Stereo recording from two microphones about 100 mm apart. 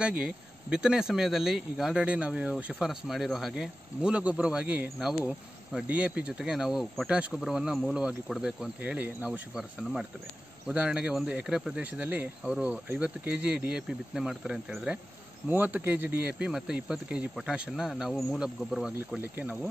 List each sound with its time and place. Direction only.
0.0 s speech: 10° right (ahead or behind)
5.9 s speech: 15° right (ahead or behind)
10.7 s speech: 10° right (ahead or behind)
15.4 s speech: 20° right (ahead or behind); by 18.9 s centre (ahead or behind)
19.1 s speech: 20° right (ahead or behind)